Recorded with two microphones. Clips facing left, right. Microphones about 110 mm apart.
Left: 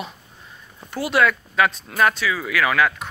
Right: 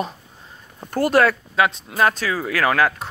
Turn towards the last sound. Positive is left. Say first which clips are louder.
# right 1 dB
turn(degrees=-35)  # may be behind; listen again after turning